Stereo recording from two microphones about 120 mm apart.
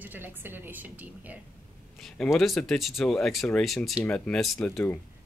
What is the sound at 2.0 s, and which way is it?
Speech, centre (ahead or behind).